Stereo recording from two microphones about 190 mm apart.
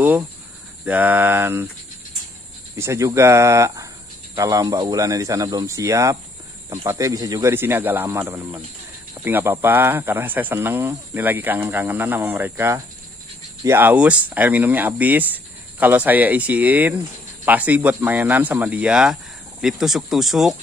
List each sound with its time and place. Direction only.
0.8 s speech: 10° right (ahead or behind)
2.7 s speech: 15° right (ahead or behind)